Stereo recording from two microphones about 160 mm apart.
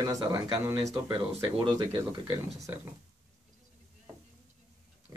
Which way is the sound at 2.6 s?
15° right (ahead or behind).